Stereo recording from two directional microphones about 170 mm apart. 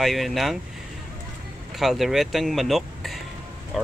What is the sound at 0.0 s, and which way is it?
Speech, centre (ahead or behind).